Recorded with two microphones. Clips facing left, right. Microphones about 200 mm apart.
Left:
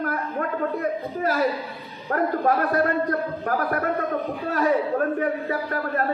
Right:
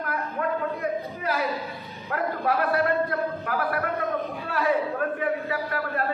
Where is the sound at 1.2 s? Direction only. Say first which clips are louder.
Left 6 dB; 45° left (ahead or behind).